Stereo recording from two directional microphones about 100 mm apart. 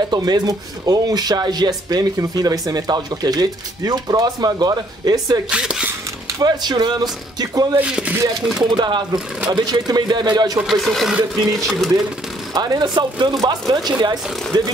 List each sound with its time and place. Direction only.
0.1 s speech: 40° right (ahead or behind)
5.5 s speech: 10° right (ahead or behind)
6.4 s speech: 45° right (ahead or behind)
7.7 s speech: 10° right (ahead or behind)
8.5 s speech: 45° right (ahead or behind)
10.6 s speech: centre (ahead or behind)
12.5 s speech: 40° right (ahead or behind)